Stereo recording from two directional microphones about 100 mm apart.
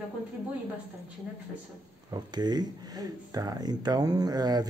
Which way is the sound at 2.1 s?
45° right (ahead or behind).